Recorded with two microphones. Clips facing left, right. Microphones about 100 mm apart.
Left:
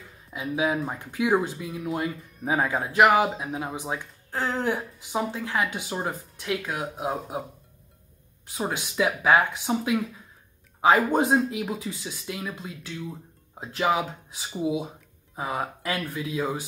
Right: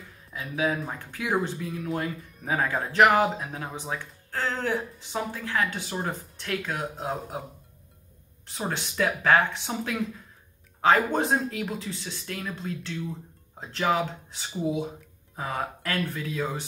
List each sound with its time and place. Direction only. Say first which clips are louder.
0.3 s speech: left 2 dB; 15° left (ahead or behind)
1.3 s speech: even; 5° left (ahead or behind)
8.5 s speech: left 2 dB; 10° left (ahead or behind)